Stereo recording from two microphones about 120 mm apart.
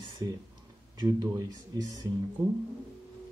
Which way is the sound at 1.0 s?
35° right (ahead or behind).